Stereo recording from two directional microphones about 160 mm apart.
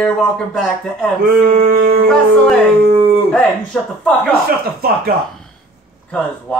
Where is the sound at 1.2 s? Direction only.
70° right (ahead or behind).